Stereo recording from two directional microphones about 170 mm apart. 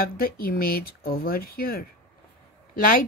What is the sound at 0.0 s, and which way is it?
A woman's voice, 60° left (ahead or behind).